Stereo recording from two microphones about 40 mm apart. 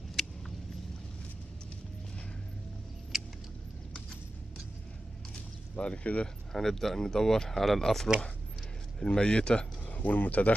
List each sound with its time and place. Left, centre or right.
0.2 s a sound: centre
3.1 s vehicle: centre
5.8 s speech: left
6.2 s speech: centre
9.0 s speech: left
9.8 s speech: left